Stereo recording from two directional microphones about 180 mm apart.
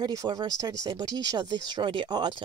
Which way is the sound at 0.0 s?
20° right (ahead or behind).